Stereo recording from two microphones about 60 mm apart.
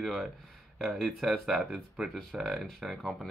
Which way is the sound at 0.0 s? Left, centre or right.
Centre.